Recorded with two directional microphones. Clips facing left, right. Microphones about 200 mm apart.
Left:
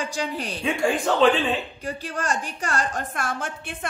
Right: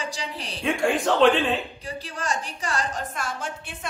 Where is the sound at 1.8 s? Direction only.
50° left (ahead or behind).